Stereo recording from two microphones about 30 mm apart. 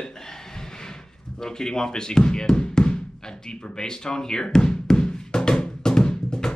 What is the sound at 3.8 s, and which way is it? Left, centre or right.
Music, left.